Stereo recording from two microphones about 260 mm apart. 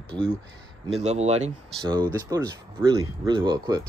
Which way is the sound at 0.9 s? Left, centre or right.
Right.